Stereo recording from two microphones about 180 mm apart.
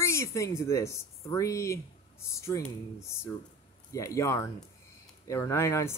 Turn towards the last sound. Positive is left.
turn(degrees=15)  # may be behind; listen again after turning